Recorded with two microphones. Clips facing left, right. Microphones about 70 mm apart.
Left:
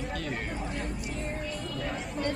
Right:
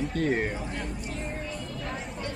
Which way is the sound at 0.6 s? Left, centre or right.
Centre.